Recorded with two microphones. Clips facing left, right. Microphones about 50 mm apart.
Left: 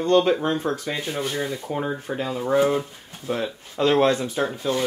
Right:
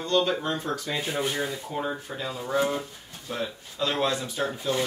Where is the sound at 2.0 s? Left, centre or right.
Left.